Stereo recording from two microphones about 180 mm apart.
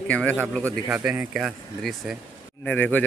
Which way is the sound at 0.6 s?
15° right (ahead or behind).